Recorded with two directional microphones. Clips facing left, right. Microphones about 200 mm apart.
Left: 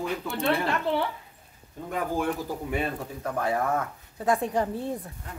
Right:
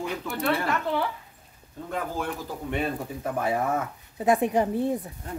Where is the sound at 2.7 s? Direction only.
5° right (ahead or behind).